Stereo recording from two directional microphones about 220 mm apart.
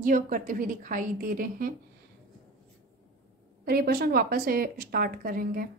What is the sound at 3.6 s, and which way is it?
A woman's voice, 45° right (ahead or behind).